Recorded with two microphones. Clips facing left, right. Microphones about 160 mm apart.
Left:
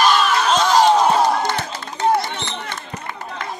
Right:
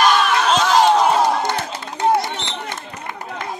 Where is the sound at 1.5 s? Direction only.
15° right (ahead or behind).